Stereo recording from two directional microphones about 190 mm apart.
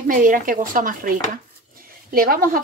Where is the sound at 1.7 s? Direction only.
50° right (ahead or behind).